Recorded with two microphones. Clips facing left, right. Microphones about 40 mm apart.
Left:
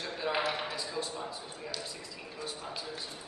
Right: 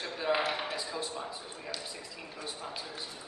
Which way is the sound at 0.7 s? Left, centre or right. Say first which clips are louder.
Even; centre.